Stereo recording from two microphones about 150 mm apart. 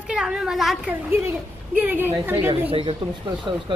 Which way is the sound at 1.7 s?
10° right (ahead or behind).